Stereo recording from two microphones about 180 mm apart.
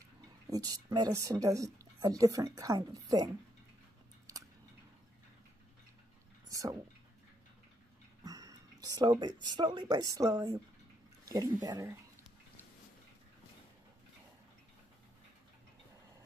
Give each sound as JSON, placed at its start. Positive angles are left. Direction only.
{"t": 0.5, "sound": "speech", "side_deg": -20}
{"t": 6.5, "sound": "a sound", "side_deg": -20}
{"t": 8.2, "sound": "speech", "side_deg": -20}